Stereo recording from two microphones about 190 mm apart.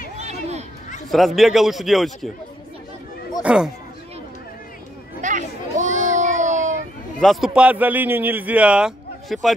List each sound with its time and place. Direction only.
0.2 s a sound: 35° right (ahead or behind)
1.1 s a man's voice: centre (ahead or behind)
3.4 s a man's voice: 5° right (ahead or behind)
5.2 s children playing: 40° right (ahead or behind)
6.0 s baby cry: 40° right (ahead or behind)
7.2 s a man's voice: centre (ahead or behind)